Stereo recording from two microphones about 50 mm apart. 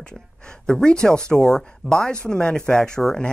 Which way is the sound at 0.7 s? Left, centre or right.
Centre.